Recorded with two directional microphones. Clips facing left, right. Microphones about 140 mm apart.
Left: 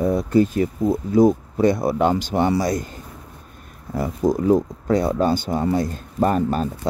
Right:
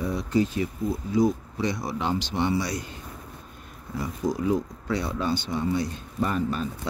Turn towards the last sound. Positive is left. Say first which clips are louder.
# left 7 dB
turn(degrees=45)  # may be behind; listen again after turning